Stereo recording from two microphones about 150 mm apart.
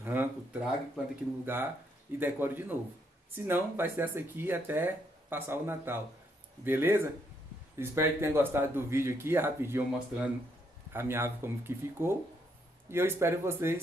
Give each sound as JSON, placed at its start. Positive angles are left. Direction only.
{"t": 0.0, "sound": "speech", "side_deg": -15}